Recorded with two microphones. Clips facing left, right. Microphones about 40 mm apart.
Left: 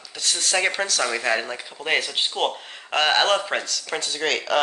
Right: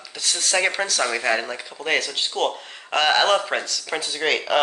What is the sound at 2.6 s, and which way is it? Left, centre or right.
Speech, centre.